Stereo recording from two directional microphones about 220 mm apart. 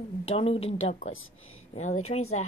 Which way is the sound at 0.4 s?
25° left (ahead or behind).